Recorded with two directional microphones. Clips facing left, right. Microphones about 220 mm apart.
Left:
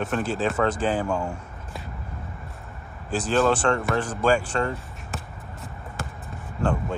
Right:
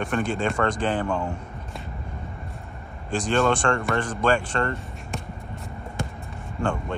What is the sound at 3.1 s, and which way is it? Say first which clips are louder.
Speech: even; 5° left (ahead or behind).